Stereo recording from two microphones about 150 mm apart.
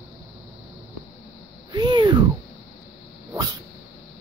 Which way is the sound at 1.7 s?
30° right (ahead or behind).